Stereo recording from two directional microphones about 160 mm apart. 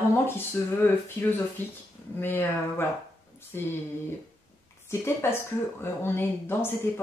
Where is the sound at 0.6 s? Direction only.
10° left (ahead or behind).